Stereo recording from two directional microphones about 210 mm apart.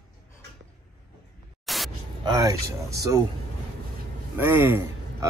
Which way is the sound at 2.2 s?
15° right (ahead or behind).